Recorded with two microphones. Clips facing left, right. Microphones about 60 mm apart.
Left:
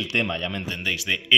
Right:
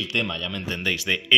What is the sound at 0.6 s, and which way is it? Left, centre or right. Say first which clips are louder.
Speech: right 1 dB; centre.